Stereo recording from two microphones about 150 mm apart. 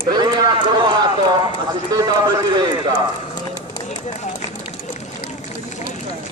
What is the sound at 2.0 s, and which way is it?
Speech, 30° right (ahead or behind).